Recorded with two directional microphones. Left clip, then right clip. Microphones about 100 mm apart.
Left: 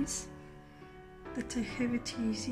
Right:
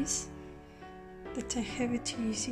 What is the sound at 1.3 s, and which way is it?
A woman's voice, 35° right (ahead or behind).